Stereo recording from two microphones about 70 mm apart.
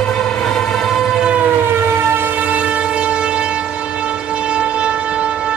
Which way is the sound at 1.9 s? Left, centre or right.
Right.